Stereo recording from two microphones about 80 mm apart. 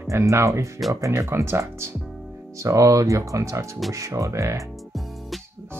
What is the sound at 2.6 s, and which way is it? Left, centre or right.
Speech, right.